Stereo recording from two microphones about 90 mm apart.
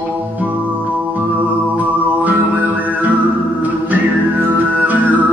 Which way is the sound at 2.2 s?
15° right (ahead or behind).